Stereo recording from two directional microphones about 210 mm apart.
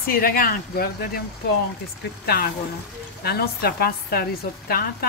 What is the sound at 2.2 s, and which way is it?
A woman's voice, 50° left (ahead or behind).